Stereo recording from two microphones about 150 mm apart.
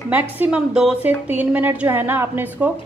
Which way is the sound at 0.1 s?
10° right (ahead or behind).